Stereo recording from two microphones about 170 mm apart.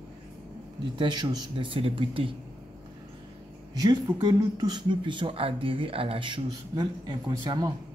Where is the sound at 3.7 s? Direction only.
25° right (ahead or behind).